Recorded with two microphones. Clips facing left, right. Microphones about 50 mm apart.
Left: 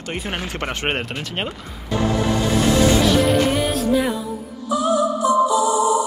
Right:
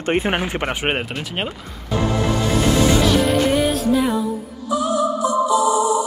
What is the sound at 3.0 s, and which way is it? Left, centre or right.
Music, centre.